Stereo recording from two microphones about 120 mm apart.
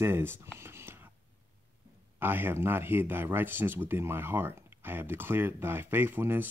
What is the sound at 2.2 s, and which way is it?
Speech, 15° right (ahead or behind).